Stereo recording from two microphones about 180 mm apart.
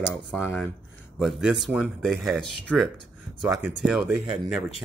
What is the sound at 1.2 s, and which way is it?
Speech, centre (ahead or behind).